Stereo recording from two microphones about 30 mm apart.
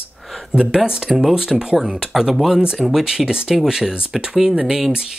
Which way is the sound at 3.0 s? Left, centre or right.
Right.